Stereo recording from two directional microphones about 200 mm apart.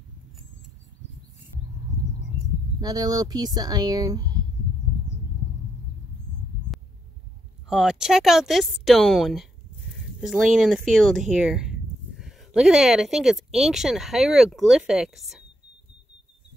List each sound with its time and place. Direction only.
2.8 s speech: 20° right (ahead or behind)
5.1 s a sound: 65° left (ahead or behind)
7.7 s speech: centre (ahead or behind)